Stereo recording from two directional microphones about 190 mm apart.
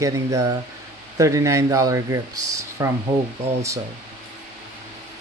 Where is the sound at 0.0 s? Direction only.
15° right (ahead or behind).